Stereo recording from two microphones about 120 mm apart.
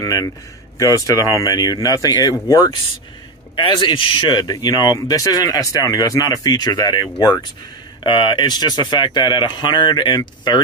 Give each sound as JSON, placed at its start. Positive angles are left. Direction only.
{"t": 0.0, "sound": "a man's voice", "side_deg": 30}
{"t": 3.5, "sound": "a man's voice", "side_deg": 40}